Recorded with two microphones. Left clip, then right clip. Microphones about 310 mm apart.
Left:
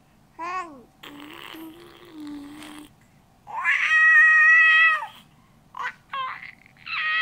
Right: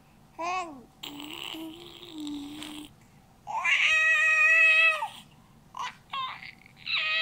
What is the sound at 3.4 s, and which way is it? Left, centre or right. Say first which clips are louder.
Cat: left 2 dB; centre.